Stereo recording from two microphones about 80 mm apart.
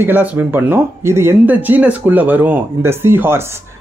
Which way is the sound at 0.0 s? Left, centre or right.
Right.